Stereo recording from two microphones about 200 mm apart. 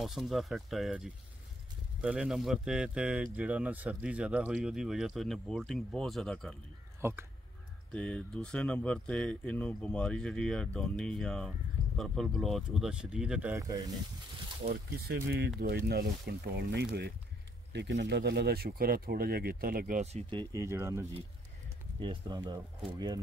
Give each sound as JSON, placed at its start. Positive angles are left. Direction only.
{"t": 0.0, "sound": "speech", "side_deg": 0}
{"t": 7.0, "sound": "speech", "side_deg": -10}
{"t": 7.9, "sound": "speech", "side_deg": 5}
{"t": 14.7, "sound": "speech", "side_deg": -55}